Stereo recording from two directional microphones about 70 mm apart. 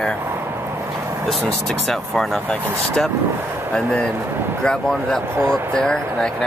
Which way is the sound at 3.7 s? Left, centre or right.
Centre.